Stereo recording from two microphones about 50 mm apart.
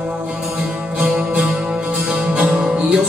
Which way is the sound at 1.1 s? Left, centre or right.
Right.